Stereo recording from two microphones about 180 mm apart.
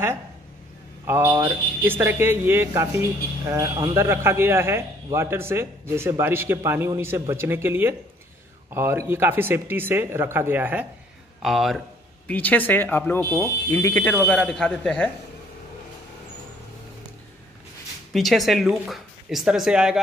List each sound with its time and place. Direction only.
1.0 s a man's voice: 15° right (ahead or behind); by 15.0 s 5° left (ahead or behind)
18.1 s speech: centre (ahead or behind)